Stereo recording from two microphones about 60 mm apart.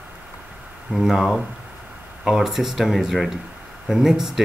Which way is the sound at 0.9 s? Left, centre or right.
Centre.